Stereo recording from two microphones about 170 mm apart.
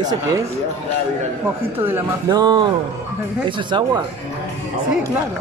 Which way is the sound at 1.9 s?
20° right (ahead or behind).